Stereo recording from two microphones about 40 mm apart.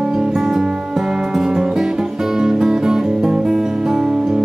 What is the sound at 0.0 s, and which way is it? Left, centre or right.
Music, centre.